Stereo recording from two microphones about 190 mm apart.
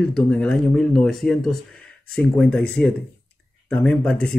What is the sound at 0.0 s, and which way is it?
Speech, 5° left (ahead or behind).